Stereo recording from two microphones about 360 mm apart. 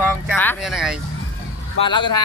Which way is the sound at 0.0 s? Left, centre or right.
Centre.